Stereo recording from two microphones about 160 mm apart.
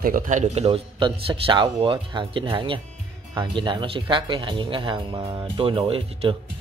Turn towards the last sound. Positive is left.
turn(degrees=-35)  # may be behind; listen again after turning